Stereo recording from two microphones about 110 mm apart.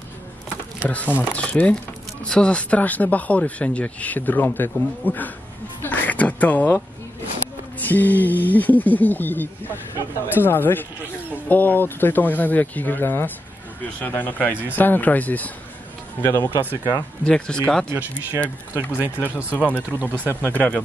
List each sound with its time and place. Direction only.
0.8 s speech: 15° left (ahead or behind)
5.8 s a sound: 15° left (ahead or behind)
7.8 s speech: 15° left (ahead or behind)
16.3 s speech: 35° left (ahead or behind)
17.2 s speech: 10° left (ahead or behind)
17.8 s speech: 20° right (ahead or behind)
19.5 s speech: 15° left (ahead or behind)
19.9 s speech: 15° right (ahead or behind)
20.2 s speech: 15° left (ahead or behind)